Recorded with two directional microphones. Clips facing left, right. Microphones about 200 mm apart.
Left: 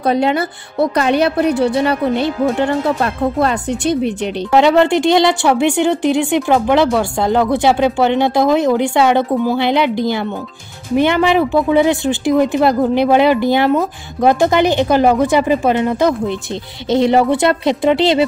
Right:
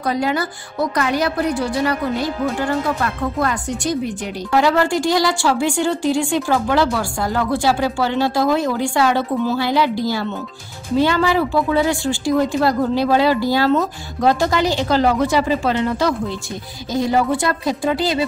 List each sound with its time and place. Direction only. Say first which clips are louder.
0.0 s speech: left 5 dB; 25° left (ahead or behind)